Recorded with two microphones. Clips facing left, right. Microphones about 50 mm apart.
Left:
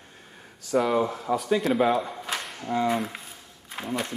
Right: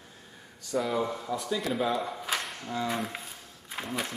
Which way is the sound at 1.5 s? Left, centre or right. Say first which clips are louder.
Left 6 dB; centre.